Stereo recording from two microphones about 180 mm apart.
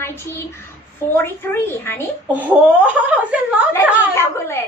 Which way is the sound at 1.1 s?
10° left (ahead or behind).